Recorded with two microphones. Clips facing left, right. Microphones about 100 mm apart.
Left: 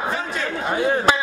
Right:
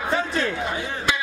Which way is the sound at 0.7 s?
50° left (ahead or behind).